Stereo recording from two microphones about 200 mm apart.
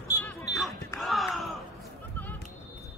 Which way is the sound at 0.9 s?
Centre (ahead or behind).